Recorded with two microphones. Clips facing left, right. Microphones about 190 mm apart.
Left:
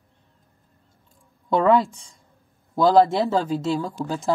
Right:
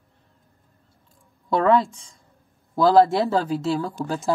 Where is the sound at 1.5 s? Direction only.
Centre (ahead or behind).